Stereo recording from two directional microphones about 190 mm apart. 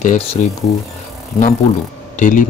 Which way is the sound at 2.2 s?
45° left (ahead or behind).